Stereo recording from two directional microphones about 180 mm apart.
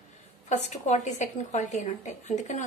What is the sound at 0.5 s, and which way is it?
A woman's voice, 40° left (ahead or behind).